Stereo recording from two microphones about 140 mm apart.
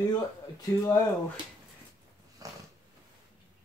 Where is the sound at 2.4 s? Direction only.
25° right (ahead or behind).